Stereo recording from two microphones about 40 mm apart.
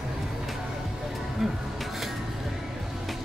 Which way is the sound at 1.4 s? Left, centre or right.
Centre.